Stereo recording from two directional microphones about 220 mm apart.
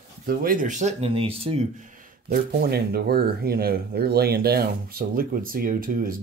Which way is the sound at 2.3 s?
45° right (ahead or behind).